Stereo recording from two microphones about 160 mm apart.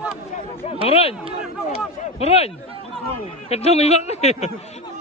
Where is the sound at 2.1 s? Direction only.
40° left (ahead or behind).